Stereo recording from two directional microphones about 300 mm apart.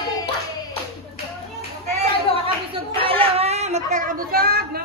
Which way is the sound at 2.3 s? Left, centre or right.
Centre.